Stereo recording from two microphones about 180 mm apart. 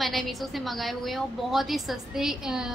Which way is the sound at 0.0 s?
Centre (ahead or behind).